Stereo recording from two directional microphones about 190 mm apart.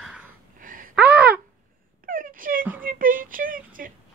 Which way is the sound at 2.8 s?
45° right (ahead or behind).